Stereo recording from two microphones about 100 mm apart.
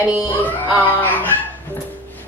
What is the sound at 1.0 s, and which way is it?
Music, 15° left (ahead or behind).